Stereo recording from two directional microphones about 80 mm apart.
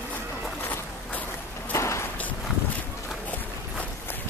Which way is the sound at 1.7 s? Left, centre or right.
Left.